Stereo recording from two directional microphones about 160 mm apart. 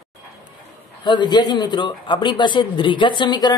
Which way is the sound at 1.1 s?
25° left (ahead or behind).